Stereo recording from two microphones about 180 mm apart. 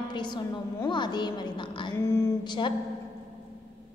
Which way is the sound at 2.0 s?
15° left (ahead or behind).